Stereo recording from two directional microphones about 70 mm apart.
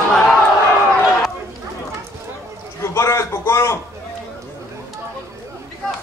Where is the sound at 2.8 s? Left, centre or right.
Left.